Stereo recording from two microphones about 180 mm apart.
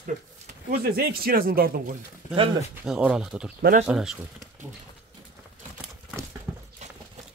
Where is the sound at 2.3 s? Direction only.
30° right (ahead or behind).